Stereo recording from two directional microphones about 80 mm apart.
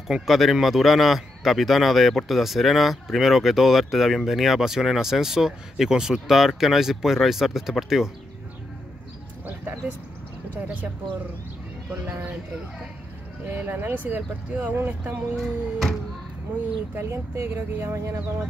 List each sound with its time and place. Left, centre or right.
0.1 s a man's voice: centre
13.6 s speech: right
15.3 s a man's voice: centre
16.9 s speech: right